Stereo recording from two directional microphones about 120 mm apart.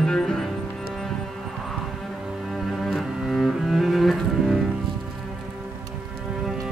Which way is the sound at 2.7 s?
Centre (ahead or behind).